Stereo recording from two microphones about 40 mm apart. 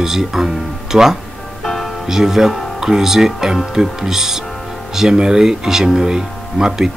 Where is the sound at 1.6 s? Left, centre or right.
Centre.